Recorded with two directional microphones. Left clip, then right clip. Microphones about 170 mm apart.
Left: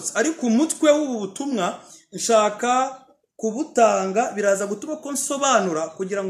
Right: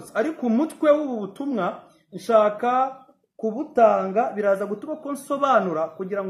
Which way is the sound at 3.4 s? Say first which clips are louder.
Left 1 dB; 15° left (ahead or behind).